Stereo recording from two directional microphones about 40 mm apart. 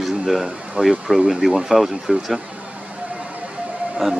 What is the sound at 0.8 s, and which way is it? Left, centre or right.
Speech, right.